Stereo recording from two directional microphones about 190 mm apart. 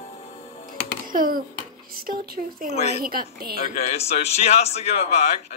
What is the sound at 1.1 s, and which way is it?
Speech, 50° right (ahead or behind).